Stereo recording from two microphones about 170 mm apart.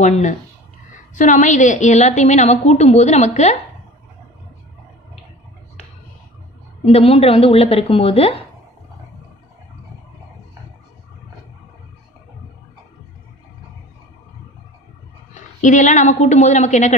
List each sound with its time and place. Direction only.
0.0 s a woman's voice: 45° left (ahead or behind)
6.8 s a woman's voice: 35° left (ahead or behind)
15.6 s a woman's voice: 45° left (ahead or behind)